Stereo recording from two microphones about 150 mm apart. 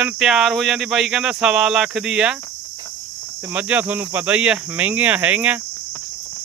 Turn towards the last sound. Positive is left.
turn(degrees=-10)  # may be behind; listen again after turning